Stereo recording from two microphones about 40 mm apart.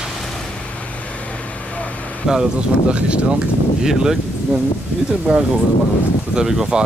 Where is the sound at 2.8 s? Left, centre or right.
Right.